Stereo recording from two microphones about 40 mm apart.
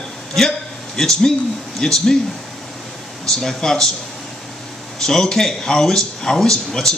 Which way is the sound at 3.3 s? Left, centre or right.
Centre.